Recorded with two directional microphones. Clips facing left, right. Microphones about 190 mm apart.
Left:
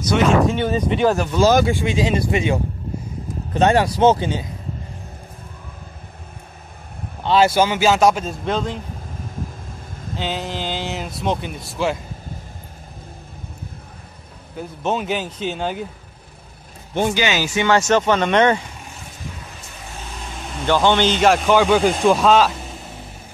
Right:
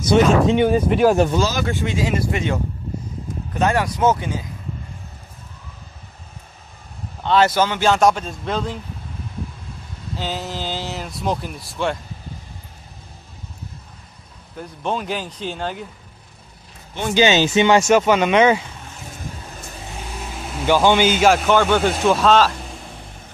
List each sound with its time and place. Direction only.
0.1 s speech: 35° right (ahead or behind)
0.5 s speech: 15° right (ahead or behind)
1.7 s a man's voice: 15° left (ahead or behind)
3.5 s mantra: 25° left (ahead or behind)
7.2 s a man's voice: 10° left (ahead or behind)
10.1 s mantra: 20° left (ahead or behind)
11.1 s a man's voice: centre (ahead or behind)
14.6 s a man's voice: 5° left (ahead or behind)
17.1 s speech: 25° right (ahead or behind); by 18.6 s 5° right (ahead or behind)
20.5 s a man's voice: 10° right (ahead or behind)